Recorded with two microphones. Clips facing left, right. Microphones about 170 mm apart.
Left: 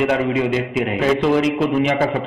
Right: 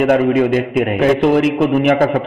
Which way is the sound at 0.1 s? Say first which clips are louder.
Right 6 dB; 50° right (ahead or behind).